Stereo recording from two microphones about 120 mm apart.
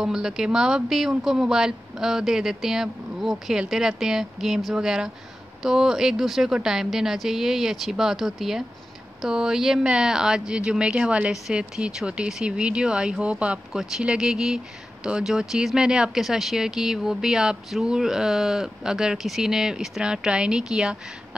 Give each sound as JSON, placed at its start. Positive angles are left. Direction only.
{"t": 0.0, "sound": "speech", "side_deg": -5}